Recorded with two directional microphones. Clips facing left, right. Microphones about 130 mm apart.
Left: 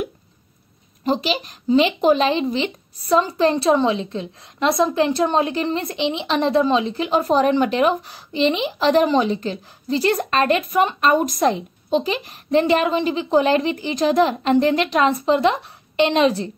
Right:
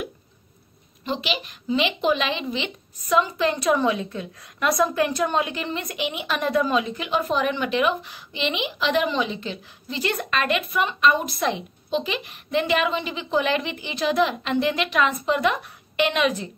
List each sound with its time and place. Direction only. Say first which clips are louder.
1.0 s a woman's voice: left 6 dB; 40° left (ahead or behind)